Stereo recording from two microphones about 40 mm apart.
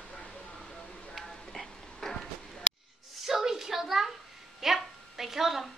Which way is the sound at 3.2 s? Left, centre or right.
Centre.